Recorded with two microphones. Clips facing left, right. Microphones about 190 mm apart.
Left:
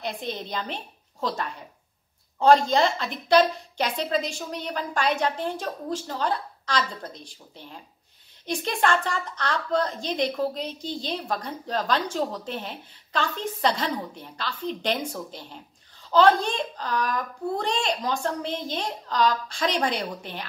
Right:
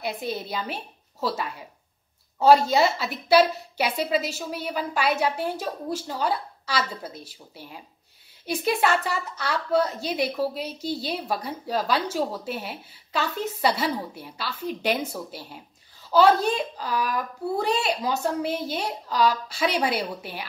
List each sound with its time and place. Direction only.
0.0 s a woman's voice: 5° right (ahead or behind)